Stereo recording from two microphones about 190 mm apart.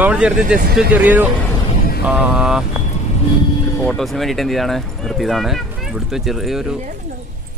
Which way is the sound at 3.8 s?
Centre (ahead or behind).